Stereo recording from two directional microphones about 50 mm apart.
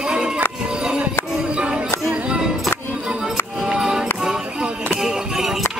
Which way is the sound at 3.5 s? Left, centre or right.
Centre.